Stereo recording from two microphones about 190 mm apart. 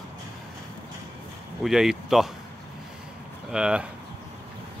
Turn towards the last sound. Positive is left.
turn(degrees=-5)  # may be behind; listen again after turning